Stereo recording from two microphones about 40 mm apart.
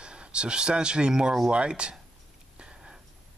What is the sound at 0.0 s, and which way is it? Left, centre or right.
Speech, right.